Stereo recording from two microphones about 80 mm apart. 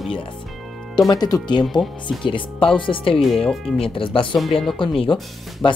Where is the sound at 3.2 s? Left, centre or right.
Centre.